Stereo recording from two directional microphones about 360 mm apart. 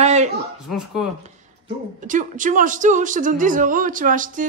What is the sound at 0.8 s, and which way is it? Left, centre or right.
Speech, centre.